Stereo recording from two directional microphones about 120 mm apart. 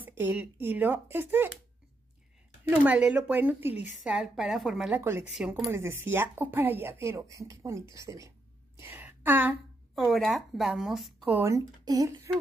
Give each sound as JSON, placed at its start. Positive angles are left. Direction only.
{"t": 0.0, "sound": "a woman's voice", "side_deg": -15}
{"t": 2.8, "sound": "a woman's voice", "side_deg": -10}
{"t": 4.9, "sound": "speech", "side_deg": -20}
{"t": 5.3, "sound": "a woman's voice", "side_deg": -5}
{"t": 5.7, "sound": "speech", "side_deg": -20}
{"t": 8.7, "sound": "a sound", "side_deg": -20}
{"t": 9.9, "sound": "a woman's voice", "side_deg": 0}
{"t": 11.4, "sound": "speech", "side_deg": -30}